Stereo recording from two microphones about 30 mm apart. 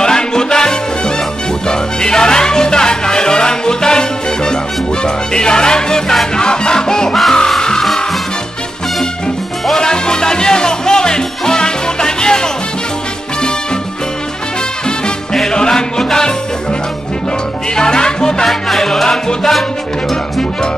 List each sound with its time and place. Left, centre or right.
0.0 s salsa music: left
1.7 s music: left
9.8 s music: left
15.5 s music: left
17.7 s music: left
18.4 s music: centre
19.0 s music: left